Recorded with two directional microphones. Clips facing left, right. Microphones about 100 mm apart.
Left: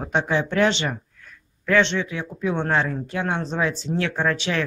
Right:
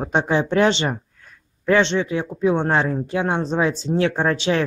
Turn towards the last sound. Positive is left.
turn(degrees=-25)  # may be behind; listen again after turning